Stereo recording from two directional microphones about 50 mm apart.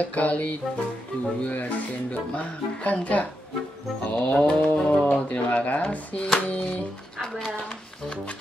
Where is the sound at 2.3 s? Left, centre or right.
Left.